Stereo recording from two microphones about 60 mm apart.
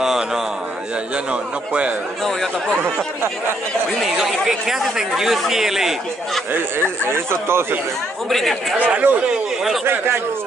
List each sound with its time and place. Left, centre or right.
0.0 s a sound: centre
1.1 s a man's voice: centre
4.0 s speech: centre
7.1 s speech: right
8.3 s speech: centre
8.7 s a man's voice: right